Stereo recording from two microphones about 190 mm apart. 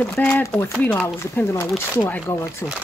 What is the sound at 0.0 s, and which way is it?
Speech, 10° left (ahead or behind).